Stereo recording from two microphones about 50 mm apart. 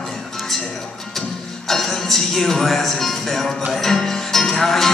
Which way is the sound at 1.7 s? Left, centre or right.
Centre.